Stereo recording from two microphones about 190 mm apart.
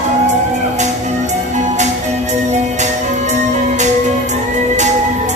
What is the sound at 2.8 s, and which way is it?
Music, 40° right (ahead or behind).